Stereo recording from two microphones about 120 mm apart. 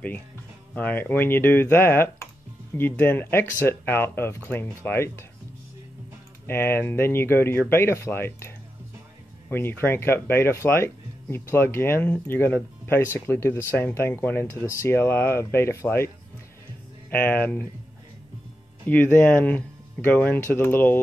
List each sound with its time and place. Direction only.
0.7 s speech: 15° left (ahead or behind)
6.4 s speech: 20° left (ahead or behind)
17.1 s speech: 15° left (ahead or behind)
18.9 s speech: 15° left (ahead or behind)